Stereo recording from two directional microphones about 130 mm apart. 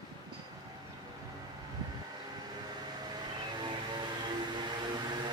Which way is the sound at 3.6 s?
35° right (ahead or behind).